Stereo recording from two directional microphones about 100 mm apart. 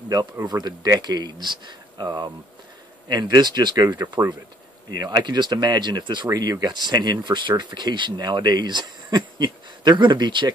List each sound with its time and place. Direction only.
0.5 s speech: 45° right (ahead or behind)